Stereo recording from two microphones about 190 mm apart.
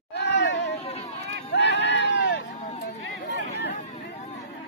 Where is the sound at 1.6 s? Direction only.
70° left (ahead or behind).